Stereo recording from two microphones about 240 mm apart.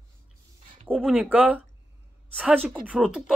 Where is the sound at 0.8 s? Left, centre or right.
Centre.